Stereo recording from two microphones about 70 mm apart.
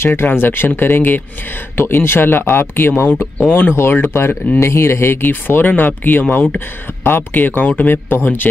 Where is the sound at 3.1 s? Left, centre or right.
Centre.